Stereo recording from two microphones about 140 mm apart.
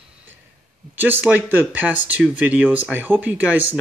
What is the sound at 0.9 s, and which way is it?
Speech, 15° right (ahead or behind).